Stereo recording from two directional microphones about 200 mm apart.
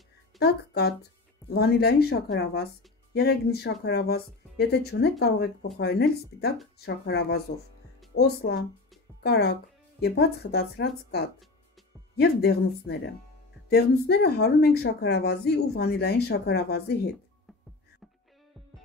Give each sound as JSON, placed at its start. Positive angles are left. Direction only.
{"t": 0.4, "sound": "speech", "side_deg": 50}